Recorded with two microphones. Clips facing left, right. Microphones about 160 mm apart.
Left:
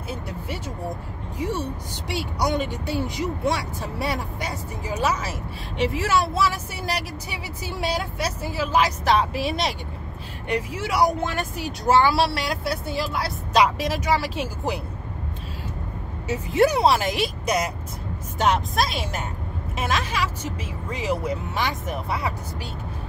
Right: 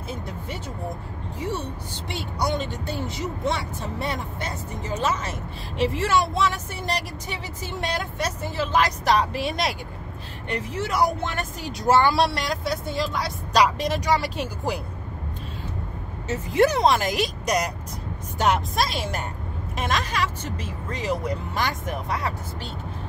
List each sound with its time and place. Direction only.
1.4 s speech: 10° left (ahead or behind)
16.3 s speech: 10° left (ahead or behind)